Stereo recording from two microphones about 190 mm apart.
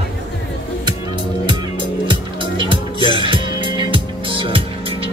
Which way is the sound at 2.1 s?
25° right (ahead or behind).